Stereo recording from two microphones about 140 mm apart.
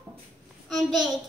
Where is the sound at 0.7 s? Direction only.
Centre (ahead or behind).